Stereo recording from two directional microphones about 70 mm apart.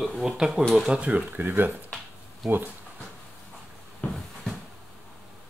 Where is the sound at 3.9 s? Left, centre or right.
Centre.